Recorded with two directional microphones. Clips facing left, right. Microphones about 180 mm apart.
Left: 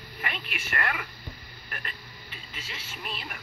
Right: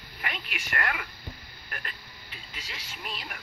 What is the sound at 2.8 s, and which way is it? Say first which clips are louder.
Speech: left 1 dB; 15° right (ahead or behind).